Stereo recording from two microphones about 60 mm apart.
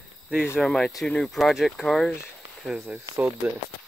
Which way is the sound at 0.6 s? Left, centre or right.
Centre.